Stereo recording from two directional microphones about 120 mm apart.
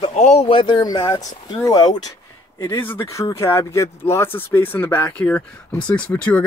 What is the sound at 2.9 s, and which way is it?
Speech, 25° left (ahead or behind).